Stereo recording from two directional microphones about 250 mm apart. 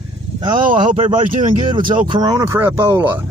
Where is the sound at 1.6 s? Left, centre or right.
Centre.